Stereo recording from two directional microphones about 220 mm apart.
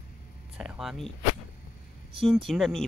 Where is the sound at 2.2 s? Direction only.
Centre (ahead or behind).